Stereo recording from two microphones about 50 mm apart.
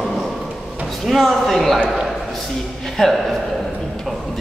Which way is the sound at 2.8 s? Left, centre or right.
Centre.